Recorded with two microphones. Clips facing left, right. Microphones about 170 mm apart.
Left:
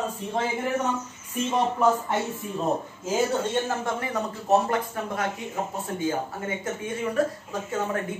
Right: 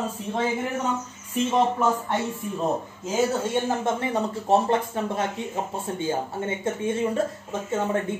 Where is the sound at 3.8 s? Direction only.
25° right (ahead or behind).